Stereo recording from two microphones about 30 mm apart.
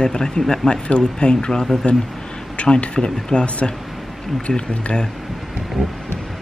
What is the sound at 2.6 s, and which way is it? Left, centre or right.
Speech, left.